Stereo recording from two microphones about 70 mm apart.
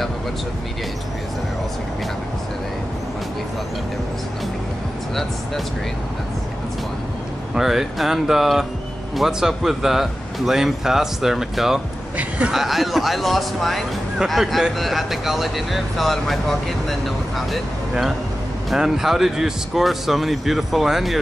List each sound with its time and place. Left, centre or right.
7.5 s speech: centre
12.2 s speech: centre
12.5 s speech: centre